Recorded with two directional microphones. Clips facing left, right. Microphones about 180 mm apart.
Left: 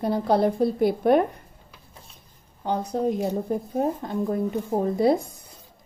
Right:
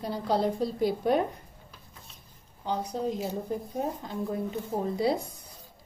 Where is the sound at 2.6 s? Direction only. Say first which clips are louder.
Left 5 dB; 55° left (ahead or behind).